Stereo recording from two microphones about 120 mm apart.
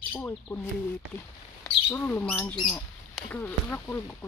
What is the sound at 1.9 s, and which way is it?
Speech, 15° left (ahead or behind).